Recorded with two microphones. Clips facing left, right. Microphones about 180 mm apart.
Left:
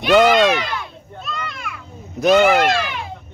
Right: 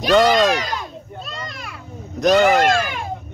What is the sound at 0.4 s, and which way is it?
Speech, 40° right (ahead or behind).